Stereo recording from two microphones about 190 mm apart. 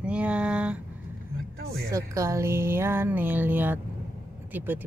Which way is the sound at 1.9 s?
15° right (ahead or behind).